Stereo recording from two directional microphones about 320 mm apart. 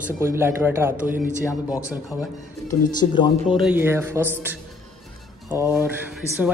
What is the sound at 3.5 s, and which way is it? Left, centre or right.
Speech, centre.